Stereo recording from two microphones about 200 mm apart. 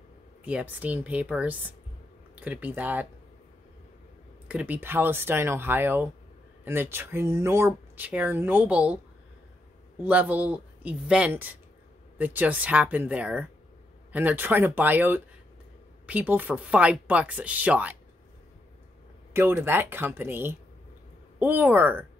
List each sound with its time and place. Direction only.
0.5 s speech: 5° right (ahead or behind)
4.5 s speech: 10° right (ahead or behind)
10.0 s speech: 10° right (ahead or behind)
19.3 s speech: 10° right (ahead or behind)